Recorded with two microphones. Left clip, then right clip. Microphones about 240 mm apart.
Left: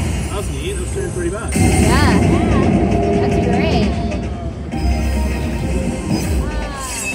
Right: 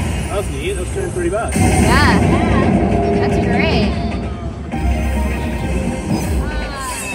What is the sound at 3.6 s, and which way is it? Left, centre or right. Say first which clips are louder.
Music: right 1 dB; right.